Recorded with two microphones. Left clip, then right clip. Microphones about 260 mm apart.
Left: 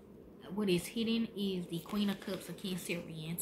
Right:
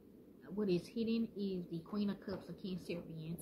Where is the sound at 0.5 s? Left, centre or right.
Centre.